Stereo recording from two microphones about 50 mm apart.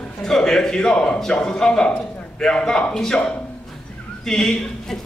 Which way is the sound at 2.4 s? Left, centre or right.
Centre.